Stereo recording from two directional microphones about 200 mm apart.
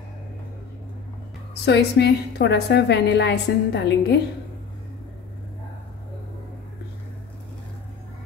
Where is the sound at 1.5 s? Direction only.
55° left (ahead or behind).